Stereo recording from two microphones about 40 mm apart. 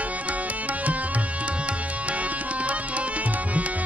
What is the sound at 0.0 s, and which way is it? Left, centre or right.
Music, right.